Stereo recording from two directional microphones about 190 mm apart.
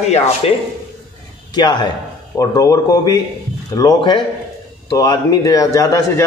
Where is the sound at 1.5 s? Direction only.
20° left (ahead or behind).